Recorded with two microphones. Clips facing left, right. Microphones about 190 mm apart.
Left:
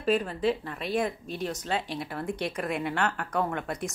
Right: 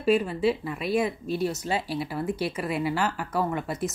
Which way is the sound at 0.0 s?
10° right (ahead or behind).